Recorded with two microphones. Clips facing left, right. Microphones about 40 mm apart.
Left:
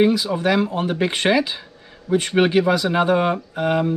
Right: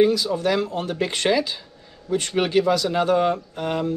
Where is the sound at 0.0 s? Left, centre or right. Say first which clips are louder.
Left 1 dB; left.